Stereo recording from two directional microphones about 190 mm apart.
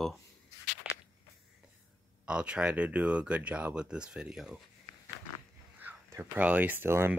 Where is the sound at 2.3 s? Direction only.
5° right (ahead or behind).